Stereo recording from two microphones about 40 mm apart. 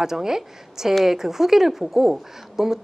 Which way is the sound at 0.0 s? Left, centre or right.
Centre.